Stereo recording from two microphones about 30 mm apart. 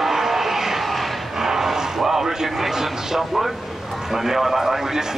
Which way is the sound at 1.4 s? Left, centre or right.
Centre.